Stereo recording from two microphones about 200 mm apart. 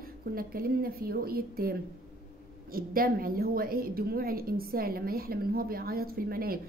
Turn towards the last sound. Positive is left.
turn(degrees=-45)  # may be behind; listen again after turning